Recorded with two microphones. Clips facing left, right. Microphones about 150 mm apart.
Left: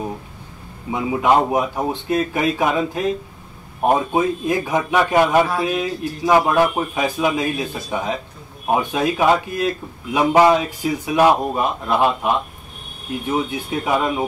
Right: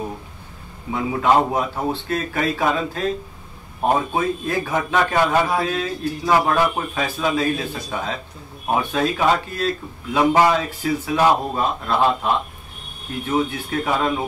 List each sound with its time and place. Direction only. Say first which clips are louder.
0.9 s a man's voice: left 1 dB; 15° left (ahead or behind)